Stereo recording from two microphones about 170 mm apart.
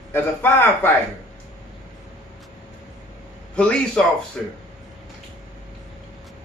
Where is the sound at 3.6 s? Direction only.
5° left (ahead or behind).